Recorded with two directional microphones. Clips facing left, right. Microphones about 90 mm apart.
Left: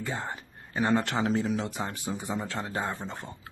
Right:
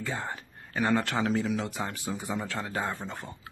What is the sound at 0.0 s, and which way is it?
Speech, 20° left (ahead or behind).